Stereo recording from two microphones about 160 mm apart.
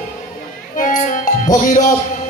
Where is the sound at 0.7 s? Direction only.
55° left (ahead or behind).